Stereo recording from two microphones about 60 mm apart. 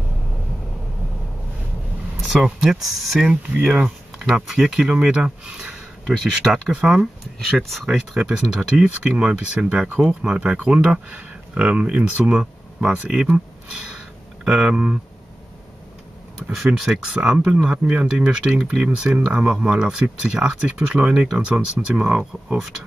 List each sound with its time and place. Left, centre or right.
2.4 s speech: centre
7.3 s speech: centre
14.4 s speech: centre
16.5 s speech: centre
17.6 s speech: right